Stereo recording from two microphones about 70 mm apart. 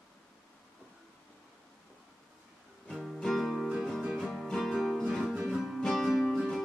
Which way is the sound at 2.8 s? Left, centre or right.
Centre.